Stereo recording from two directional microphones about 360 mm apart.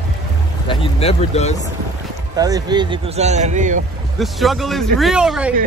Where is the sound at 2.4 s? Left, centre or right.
Centre.